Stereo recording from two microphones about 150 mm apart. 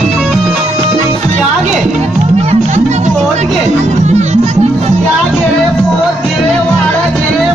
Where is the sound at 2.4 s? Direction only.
50° right (ahead or behind).